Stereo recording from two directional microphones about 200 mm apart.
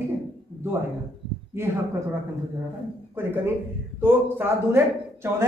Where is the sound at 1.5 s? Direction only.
10° right (ahead or behind).